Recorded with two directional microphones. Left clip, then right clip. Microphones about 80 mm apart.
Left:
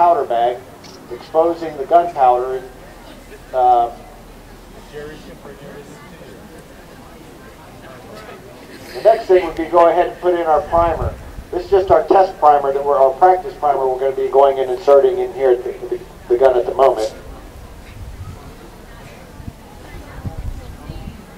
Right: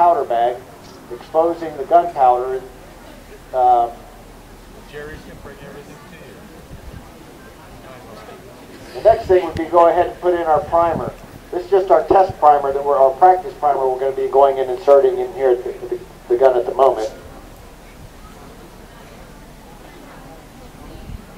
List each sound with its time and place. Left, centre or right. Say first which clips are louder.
0.0 s a sound: left 1 dB; centre
1.1 s a man's voice: left 1 dB; centre
8.8 s a man's voice: left 1 dB; centre
15.8 s a man's voice: left 1 dB; centre